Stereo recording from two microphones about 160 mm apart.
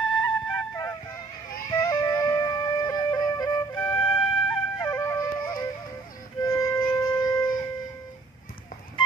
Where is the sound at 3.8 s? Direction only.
10° left (ahead or behind).